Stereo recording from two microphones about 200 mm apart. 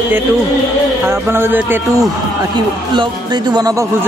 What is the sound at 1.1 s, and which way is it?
Speech, 10° right (ahead or behind).